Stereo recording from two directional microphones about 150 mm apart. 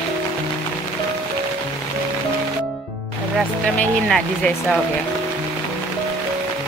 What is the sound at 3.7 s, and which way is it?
Speech, 5° left (ahead or behind).